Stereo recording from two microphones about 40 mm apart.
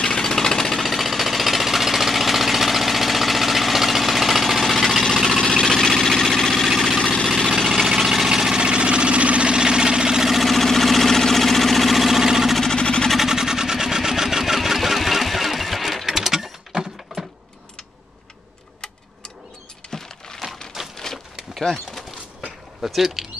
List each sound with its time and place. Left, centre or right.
0.0 s a sound: centre
5.0 s engine: centre
7.7 s engine: centre
8.5 s engine: right
10.3 s engine: centre
12.7 s vehicle: left
13.2 s vehicle: centre
16.1 s a sound: centre
19.9 s a sound: centre